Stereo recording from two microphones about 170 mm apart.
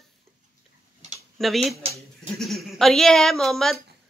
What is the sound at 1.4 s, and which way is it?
Speech, centre (ahead or behind).